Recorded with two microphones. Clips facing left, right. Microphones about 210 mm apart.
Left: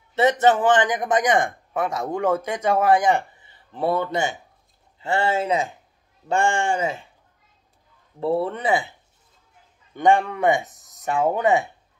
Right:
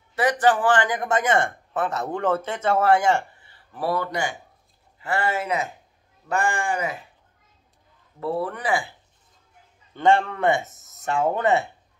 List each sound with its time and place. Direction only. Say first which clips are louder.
0.1 s speech: left 2 dB; 25° left (ahead or behind)
8.2 s speech: left 4 dB; 25° left (ahead or behind)
9.9 s speech: left 1 dB; 15° left (ahead or behind)